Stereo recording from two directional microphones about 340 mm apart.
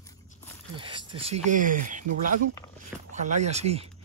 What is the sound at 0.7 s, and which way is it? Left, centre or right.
Speech, centre.